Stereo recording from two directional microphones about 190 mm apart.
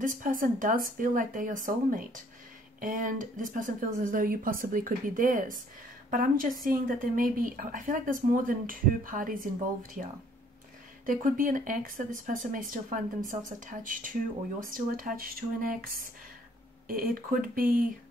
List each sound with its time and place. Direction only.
0.0 s speech: 45° right (ahead or behind)
11.1 s speech: 45° right (ahead or behind)